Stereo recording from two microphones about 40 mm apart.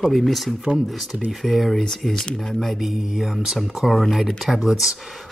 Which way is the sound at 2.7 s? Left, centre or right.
Centre.